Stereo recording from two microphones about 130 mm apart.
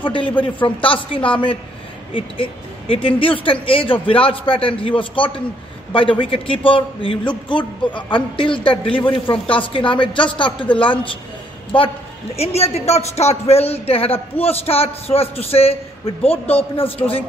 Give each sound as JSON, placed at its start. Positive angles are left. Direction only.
{"t": 0.0, "sound": "a man's voice", "side_deg": 40}
{"t": 12.4, "sound": "a woman's voice", "side_deg": 55}